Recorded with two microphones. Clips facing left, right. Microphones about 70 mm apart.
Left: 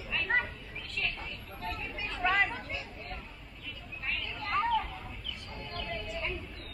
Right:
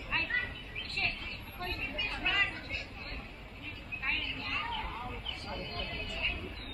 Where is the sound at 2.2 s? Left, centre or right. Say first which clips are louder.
Left 6 dB; left.